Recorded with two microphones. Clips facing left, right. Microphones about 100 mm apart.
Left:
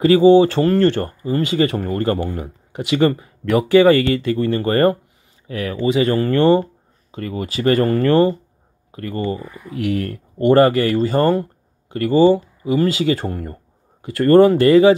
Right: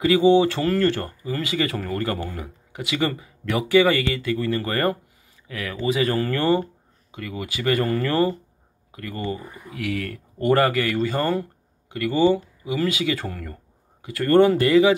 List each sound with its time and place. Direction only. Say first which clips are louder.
0.0 s speech: left 6 dB; 35° left (ahead or behind)
2.4 s speech: left 5 dB; 30° left (ahead or behind)